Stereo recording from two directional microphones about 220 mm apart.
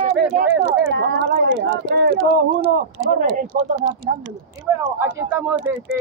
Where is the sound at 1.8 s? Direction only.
45° right (ahead or behind).